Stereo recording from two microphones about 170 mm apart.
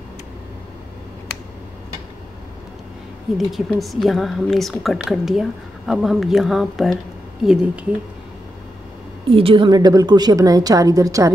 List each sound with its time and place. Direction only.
3.3 s a woman's voice: centre (ahead or behind)
9.3 s a woman's voice: 30° right (ahead or behind)